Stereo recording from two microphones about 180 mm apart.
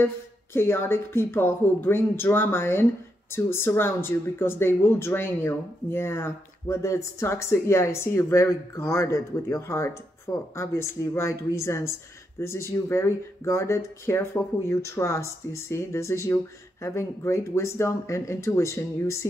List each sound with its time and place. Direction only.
0.0 s speech: 15° left (ahead or behind)